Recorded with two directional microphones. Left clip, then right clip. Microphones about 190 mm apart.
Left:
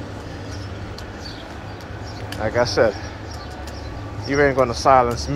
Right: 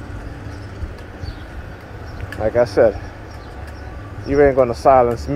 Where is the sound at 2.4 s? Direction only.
50° right (ahead or behind).